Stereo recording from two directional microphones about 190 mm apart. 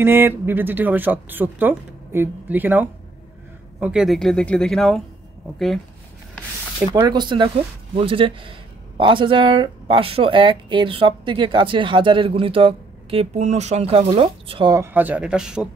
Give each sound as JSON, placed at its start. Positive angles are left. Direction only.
{"t": 0.0, "sound": "speech", "side_deg": -10}
{"t": 6.9, "sound": "speech", "side_deg": -20}